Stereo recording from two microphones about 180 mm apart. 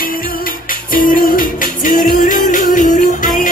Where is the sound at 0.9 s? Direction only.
50° left (ahead or behind).